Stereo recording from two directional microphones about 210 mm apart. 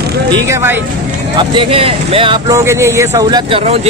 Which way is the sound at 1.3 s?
25° right (ahead or behind).